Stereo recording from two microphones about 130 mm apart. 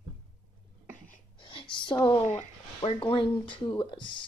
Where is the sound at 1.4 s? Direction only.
40° left (ahead or behind).